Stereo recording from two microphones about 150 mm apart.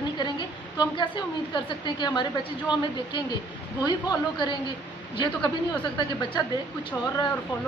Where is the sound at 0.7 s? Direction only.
30° left (ahead or behind).